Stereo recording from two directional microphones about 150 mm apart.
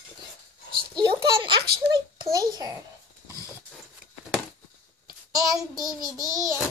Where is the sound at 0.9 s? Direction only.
30° right (ahead or behind).